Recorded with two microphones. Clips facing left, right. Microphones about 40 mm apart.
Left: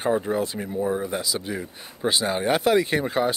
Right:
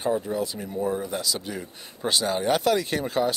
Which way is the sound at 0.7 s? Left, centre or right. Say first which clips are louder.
Left 2 dB; centre.